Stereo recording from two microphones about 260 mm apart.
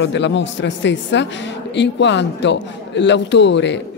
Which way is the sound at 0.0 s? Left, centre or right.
Left.